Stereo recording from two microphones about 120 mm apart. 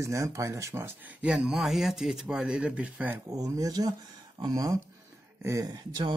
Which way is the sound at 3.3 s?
30° right (ahead or behind).